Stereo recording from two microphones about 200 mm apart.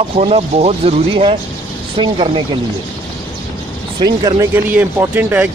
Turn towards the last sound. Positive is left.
turn(degrees=-5)  # may be behind; listen again after turning